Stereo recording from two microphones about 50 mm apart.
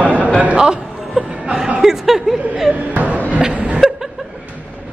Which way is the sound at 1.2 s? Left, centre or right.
Right.